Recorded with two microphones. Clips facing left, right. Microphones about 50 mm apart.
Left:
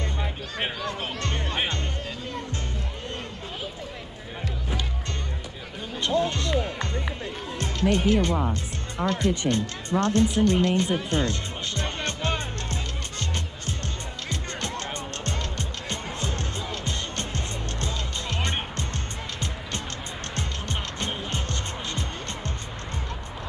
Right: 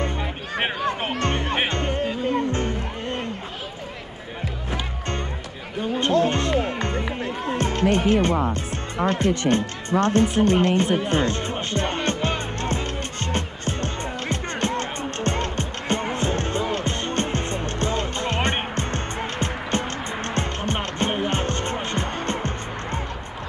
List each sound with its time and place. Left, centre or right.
0.2 s music: right
5.8 s a sound: right
6.2 s music: right
8.9 s speech: right
9.5 s music: right